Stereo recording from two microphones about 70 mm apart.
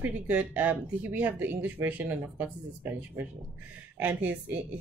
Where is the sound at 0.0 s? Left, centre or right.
Right.